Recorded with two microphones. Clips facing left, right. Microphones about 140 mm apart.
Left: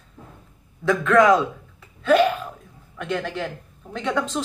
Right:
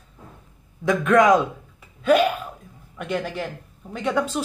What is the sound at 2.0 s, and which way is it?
Hiccup, 15° right (ahead or behind).